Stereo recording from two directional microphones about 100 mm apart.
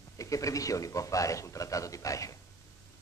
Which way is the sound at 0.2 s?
35° left (ahead or behind).